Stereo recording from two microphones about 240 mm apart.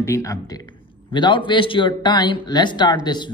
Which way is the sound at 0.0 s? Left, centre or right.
Centre.